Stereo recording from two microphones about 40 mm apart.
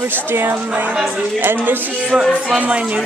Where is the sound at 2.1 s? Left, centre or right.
Right.